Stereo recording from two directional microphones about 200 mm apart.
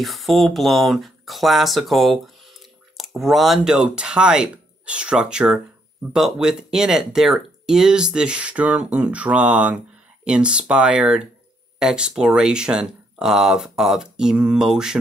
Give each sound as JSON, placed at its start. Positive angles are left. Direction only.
{"t": 0.0, "sound": "speech", "side_deg": 0}